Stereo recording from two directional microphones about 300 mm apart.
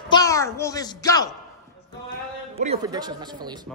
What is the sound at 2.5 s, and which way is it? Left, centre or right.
Speech, centre.